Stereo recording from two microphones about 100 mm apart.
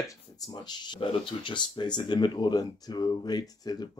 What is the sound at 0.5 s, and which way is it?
Speech, 45° left (ahead or behind).